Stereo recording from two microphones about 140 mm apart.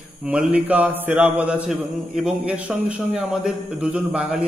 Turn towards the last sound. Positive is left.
turn(degrees=-10)  # may be behind; listen again after turning